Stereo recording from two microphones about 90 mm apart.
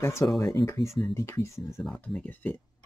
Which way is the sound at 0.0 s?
30° left (ahead or behind).